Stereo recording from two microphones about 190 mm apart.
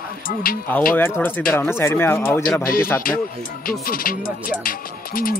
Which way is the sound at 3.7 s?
50° left (ahead or behind).